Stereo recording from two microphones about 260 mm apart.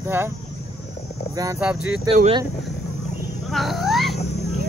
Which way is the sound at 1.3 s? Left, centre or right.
Centre.